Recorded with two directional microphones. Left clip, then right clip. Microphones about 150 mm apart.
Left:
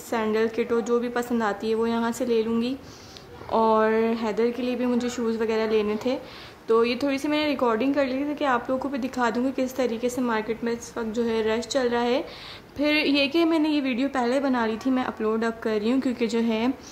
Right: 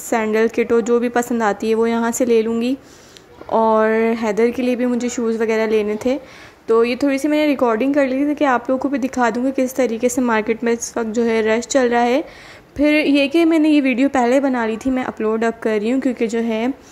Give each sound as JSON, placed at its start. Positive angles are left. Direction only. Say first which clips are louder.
{"t": 0.1, "sound": "a woman's voice", "louder": "right 7 dB", "side_deg": -40}